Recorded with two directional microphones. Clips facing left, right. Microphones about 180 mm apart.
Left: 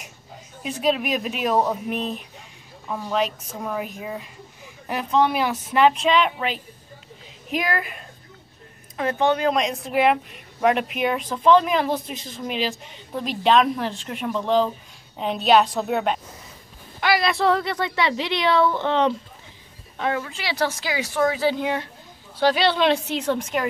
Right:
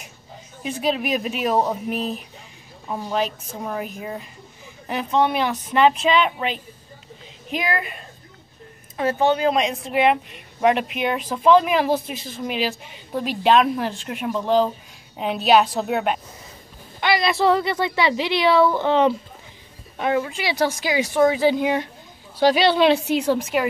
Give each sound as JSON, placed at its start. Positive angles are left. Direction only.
{"t": 0.7, "sound": "a woman's voice", "side_deg": 0}
{"t": 2.9, "sound": "speech", "side_deg": -15}
{"t": 3.2, "sound": "a woman's voice", "side_deg": 0}